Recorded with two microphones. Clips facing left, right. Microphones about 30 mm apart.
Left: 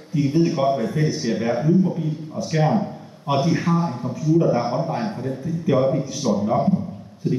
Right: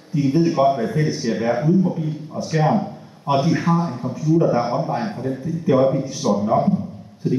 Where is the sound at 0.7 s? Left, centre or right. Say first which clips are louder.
Right 1 dB; centre.